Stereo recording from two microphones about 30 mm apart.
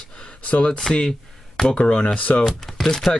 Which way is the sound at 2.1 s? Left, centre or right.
Left.